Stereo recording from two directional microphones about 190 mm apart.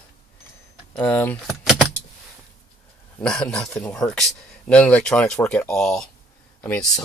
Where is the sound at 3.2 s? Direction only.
5° left (ahead or behind).